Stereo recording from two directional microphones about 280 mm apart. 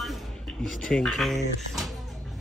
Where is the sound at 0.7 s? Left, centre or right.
Centre.